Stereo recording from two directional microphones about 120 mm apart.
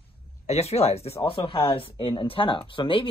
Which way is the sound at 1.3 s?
45° left (ahead or behind).